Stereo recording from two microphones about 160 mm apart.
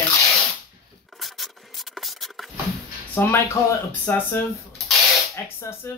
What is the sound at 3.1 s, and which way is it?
Speech, 15° left (ahead or behind).